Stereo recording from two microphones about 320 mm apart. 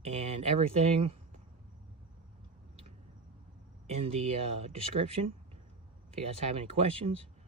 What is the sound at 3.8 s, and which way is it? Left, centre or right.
Speech, centre.